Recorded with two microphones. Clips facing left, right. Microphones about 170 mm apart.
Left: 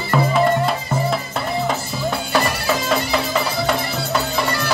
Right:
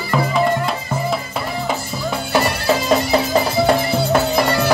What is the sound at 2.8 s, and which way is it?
Music, 40° right (ahead or behind).